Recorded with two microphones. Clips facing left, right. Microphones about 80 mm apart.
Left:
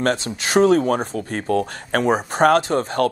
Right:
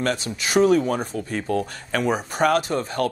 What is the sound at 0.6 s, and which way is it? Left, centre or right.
Speech, left.